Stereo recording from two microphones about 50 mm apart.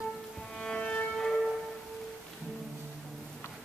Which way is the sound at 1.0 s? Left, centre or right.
Centre.